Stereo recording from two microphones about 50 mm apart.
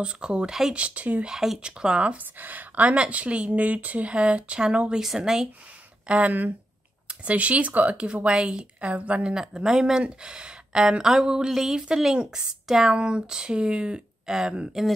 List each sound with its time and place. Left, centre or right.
0.0 s speech: right
1.2 s speech: centre
1.6 s speech: right
2.1 s speech: right; by 5.0 s centre
5.0 s speech: centre
6.0 s speech: right
8.0 s speech: centre
9.3 s speech: centre
12.9 s speech: centre